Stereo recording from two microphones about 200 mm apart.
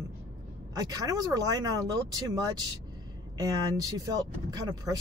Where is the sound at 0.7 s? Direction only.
20° right (ahead or behind).